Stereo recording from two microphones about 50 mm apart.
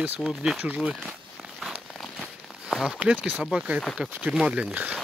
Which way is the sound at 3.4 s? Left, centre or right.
Centre.